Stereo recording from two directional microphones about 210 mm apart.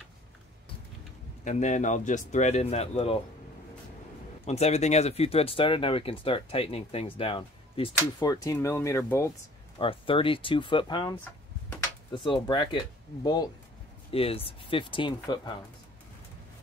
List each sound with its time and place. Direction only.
1.4 s speech: 35° left (ahead or behind)
4.5 s speech: 30° left (ahead or behind); by 9.3 s 15° left (ahead or behind)
9.8 s speech: 25° left (ahead or behind)